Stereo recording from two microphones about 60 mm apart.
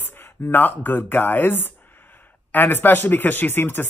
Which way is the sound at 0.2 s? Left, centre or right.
Left.